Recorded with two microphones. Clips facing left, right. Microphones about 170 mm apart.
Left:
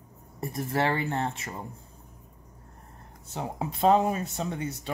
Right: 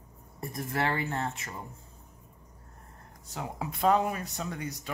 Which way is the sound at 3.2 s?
25° left (ahead or behind).